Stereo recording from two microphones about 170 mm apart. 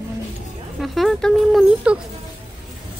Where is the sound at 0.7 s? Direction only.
Centre (ahead or behind).